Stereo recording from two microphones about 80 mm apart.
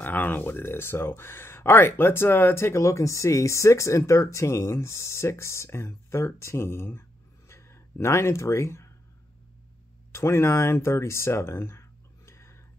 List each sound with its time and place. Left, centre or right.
0.0 s speech: left
10.1 s speech: left
12.3 s whispering: left